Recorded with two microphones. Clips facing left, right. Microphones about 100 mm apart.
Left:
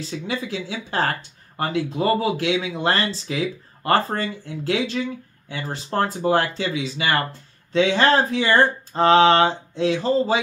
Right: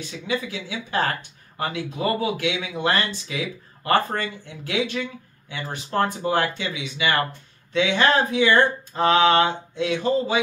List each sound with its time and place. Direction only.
0.0 s speech: 30° left (ahead or behind)